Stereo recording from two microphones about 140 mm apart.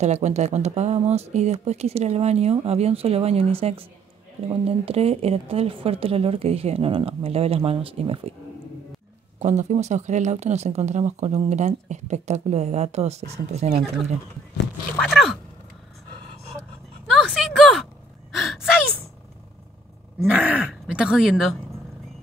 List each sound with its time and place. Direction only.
0.0 s speech: 55° right (ahead or behind)
9.4 s speech: 55° right (ahead or behind)
15.0 s biting: centre (ahead or behind)
17.1 s a sound: centre (ahead or behind)
18.3 s gasp: centre (ahead or behind)
20.2 s groan: 10° right (ahead or behind)
20.8 s speech: 5° right (ahead or behind)